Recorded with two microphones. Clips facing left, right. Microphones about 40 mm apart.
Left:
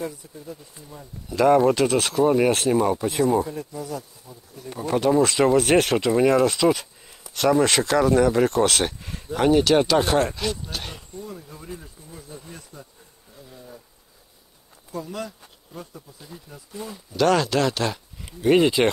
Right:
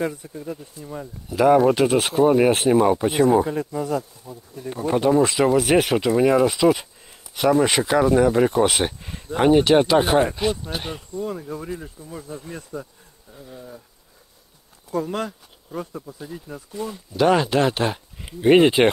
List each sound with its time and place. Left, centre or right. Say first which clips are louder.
0.0 s speech: right 6 dB; right
0.3 s speech: right 6 dB; right
1.3 s speech: right 1 dB; centre; by 3.4 s right
3.4 s speech: right 7 dB; right
4.9 s speech: right 1 dB; centre; by 12.8 s right
13.3 s speech: right 4 dB; centre
14.9 s speech: right 7 dB; right
16.2 s speech: right 8 dB; centre
16.7 s speech: right 4 dB; centre
17.2 s speech: right 2 dB; centre